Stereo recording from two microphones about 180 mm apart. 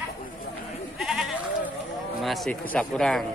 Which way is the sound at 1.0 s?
Centre (ahead or behind).